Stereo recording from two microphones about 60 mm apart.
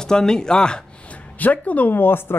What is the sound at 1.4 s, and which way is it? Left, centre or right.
Speech, left.